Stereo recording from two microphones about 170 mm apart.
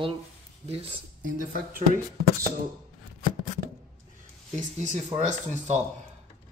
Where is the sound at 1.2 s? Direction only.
60° right (ahead or behind).